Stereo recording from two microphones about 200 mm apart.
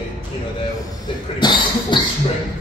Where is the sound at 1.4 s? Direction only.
25° left (ahead or behind).